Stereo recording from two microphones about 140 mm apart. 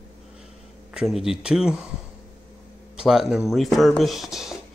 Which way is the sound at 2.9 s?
5° right (ahead or behind).